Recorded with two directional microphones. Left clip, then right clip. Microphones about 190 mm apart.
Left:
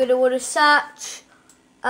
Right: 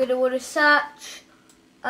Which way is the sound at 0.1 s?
40° left (ahead or behind).